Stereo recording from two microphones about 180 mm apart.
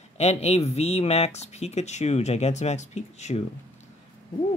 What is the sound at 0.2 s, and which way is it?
Speech, 35° left (ahead or behind).